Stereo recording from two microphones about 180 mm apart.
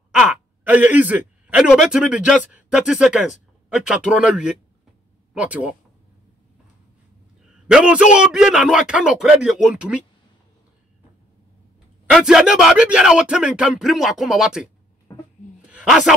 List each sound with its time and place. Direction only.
0.1 s speech: 5° right (ahead or behind)
7.6 s speech: 5° right (ahead or behind)
12.1 s speech: 5° right (ahead or behind)
15.1 s a sound: 20° left (ahead or behind)
15.7 s speech: 5° right (ahead or behind)